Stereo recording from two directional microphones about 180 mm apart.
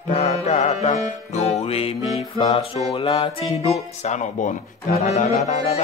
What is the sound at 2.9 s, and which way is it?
Speech, 30° left (ahead or behind).